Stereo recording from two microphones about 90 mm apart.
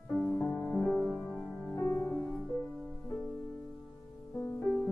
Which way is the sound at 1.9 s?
35° left (ahead or behind).